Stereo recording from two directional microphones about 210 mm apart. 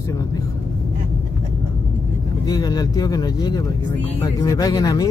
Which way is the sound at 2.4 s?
15° left (ahead or behind).